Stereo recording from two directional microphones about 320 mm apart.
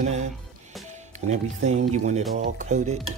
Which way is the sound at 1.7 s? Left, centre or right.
Right.